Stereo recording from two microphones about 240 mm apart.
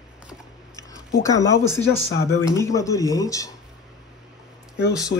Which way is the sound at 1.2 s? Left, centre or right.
Centre.